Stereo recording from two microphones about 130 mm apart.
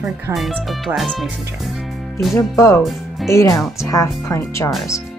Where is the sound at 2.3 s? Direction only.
25° left (ahead or behind).